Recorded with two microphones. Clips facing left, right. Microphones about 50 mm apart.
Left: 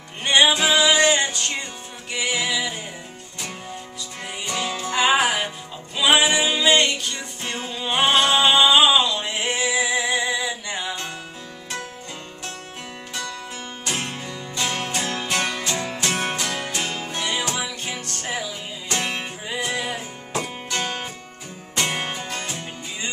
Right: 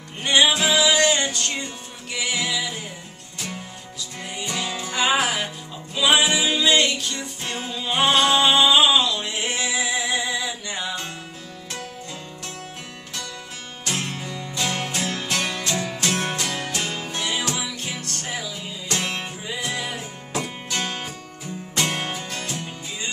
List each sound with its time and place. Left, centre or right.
0.2 s music: centre
4.2 s music: centre
13.8 s music: centre